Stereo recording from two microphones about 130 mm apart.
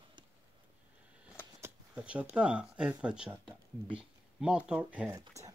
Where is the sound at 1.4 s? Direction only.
20° left (ahead or behind).